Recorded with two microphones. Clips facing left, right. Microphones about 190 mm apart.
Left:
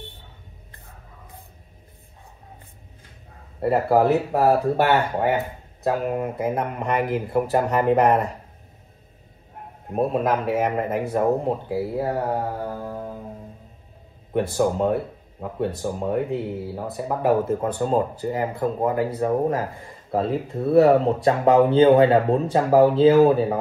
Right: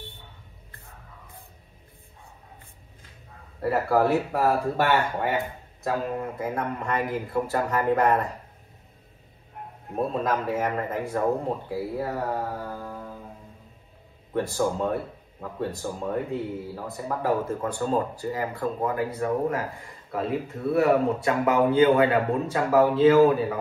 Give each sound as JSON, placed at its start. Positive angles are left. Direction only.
{"t": 3.6, "sound": "speech", "side_deg": 20}
{"t": 9.9, "sound": "speech", "side_deg": 15}
{"t": 14.3, "sound": "speech", "side_deg": 20}